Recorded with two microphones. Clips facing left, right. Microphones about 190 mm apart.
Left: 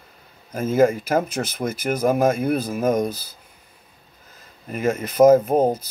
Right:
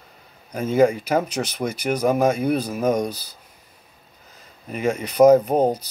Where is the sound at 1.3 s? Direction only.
50° left (ahead or behind).